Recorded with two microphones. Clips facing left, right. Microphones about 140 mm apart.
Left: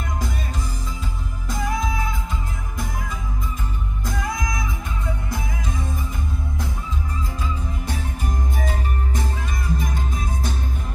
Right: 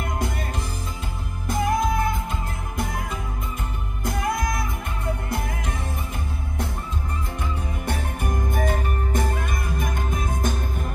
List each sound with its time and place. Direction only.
1.5 s music: 55° right (ahead or behind)
4.0 s music: 55° right (ahead or behind)
7.8 s jingle bell: 55° right (ahead or behind)